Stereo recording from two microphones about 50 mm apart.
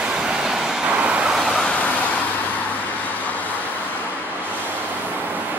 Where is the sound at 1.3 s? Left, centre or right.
Centre.